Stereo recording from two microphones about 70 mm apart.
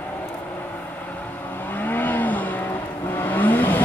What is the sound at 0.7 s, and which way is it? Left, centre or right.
Vehicle, left.